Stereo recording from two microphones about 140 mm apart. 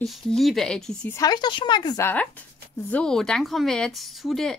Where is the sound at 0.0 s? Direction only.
Centre (ahead or behind).